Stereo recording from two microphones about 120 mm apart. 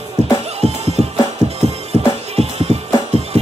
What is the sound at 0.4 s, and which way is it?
Music, 60° right (ahead or behind).